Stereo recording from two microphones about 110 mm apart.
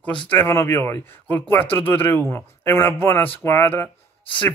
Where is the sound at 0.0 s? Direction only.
10° left (ahead or behind).